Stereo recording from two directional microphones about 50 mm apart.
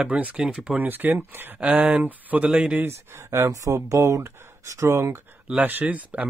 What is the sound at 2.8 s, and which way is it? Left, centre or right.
Speech, right.